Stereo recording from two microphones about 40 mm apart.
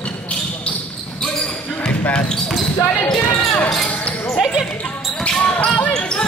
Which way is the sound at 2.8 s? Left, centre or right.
Left.